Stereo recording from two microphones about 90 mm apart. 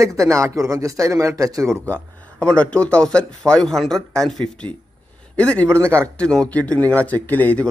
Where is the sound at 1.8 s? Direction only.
15° left (ahead or behind).